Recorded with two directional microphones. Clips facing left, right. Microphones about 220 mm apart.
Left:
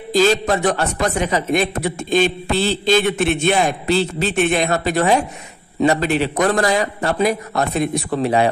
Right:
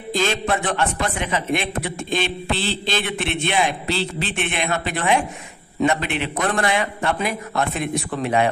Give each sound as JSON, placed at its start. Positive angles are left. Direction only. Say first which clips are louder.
{"t": 0.1, "sound": "a man's voice", "louder": "left 6 dB", "side_deg": 40}